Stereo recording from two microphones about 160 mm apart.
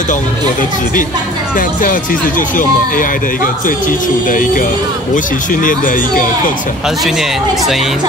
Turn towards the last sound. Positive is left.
turn(degrees=0)  # may be behind; listen again after turning